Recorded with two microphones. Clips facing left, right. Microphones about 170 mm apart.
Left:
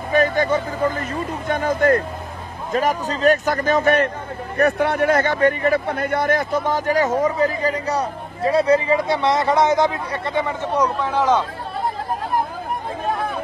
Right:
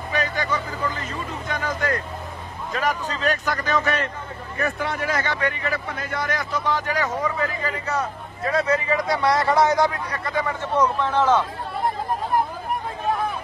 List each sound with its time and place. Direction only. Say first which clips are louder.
0.1 s vehicle: left 8 dB; 50° left (ahead or behind)
2.7 s speech: left 5 dB; 45° left (ahead or behind)
4.6 s speech: left 8 dB; 65° left (ahead or behind); by 11.4 s 10° left (ahead or behind)